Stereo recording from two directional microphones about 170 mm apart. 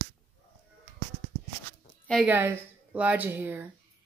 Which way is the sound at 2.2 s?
15° right (ahead or behind).